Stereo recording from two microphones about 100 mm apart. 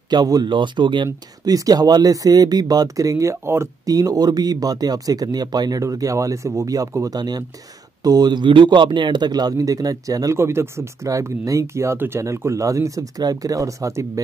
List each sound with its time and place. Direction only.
0.1 s a man's voice: 45° right (ahead or behind)